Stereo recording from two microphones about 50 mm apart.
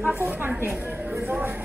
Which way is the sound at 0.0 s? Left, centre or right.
Right.